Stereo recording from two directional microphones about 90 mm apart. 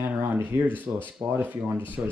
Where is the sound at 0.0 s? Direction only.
20° right (ahead or behind).